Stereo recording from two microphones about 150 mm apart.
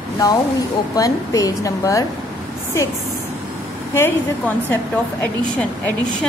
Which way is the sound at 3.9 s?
15° left (ahead or behind).